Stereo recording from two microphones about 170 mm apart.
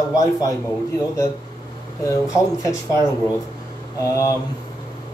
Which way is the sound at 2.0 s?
20° left (ahead or behind).